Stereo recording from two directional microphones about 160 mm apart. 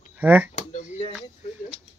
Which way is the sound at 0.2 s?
10° right (ahead or behind).